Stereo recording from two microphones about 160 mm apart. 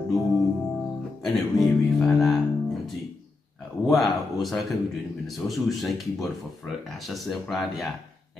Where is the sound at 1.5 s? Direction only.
Centre (ahead or behind).